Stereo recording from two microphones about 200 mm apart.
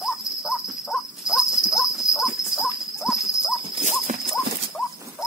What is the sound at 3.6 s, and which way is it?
Horse, 30° right (ahead or behind).